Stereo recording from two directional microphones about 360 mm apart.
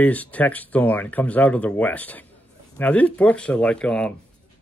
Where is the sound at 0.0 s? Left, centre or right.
Centre.